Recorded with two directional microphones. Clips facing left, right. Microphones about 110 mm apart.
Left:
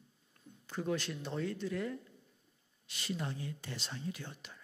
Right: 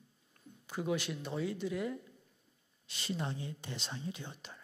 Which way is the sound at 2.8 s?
25° right (ahead or behind).